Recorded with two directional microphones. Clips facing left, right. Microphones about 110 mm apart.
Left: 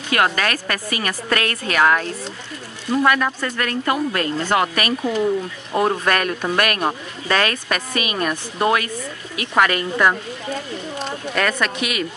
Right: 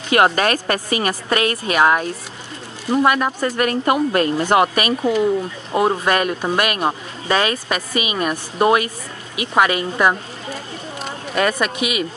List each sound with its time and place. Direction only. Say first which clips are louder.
0.1 s a woman's voice: right 4 dB; 25° right (ahead or behind)
11.3 s speech: right 3 dB; 15° right (ahead or behind)